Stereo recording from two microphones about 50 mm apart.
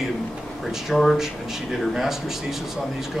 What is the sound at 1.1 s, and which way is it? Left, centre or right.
Speech, centre.